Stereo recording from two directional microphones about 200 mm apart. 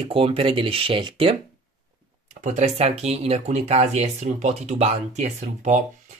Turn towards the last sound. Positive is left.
turn(degrees=-35)  # may be behind; listen again after turning